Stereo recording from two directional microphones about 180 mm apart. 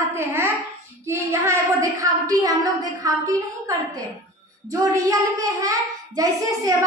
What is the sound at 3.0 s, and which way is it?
A child's voice, 20° right (ahead or behind).